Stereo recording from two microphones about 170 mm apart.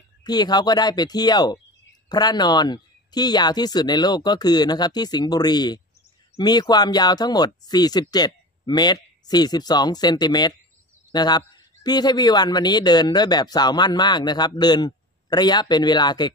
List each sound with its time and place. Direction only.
0.2 s a man's voice: 25° left (ahead or behind)